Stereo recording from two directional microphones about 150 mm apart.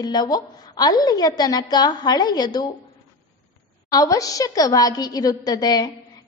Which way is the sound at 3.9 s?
25° left (ahead or behind).